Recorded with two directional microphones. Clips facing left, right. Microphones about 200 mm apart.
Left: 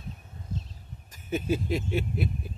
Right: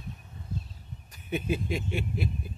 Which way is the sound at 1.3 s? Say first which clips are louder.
Left 2 dB; 40° left (ahead or behind).